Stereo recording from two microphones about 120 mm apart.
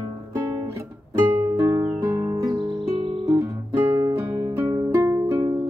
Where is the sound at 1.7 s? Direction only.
25° right (ahead or behind).